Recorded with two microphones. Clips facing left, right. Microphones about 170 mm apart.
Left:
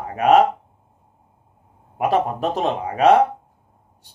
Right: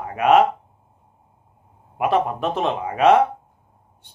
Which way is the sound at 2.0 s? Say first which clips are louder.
Left 1 dB; 40° left (ahead or behind).